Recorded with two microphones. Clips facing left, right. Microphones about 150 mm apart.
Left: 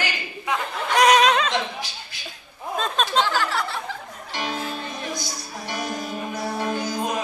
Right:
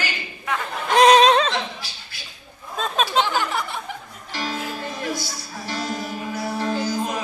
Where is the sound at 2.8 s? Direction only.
5° right (ahead or behind).